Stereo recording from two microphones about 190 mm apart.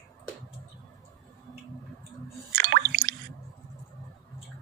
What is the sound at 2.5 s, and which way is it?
Drip, 50° right (ahead or behind).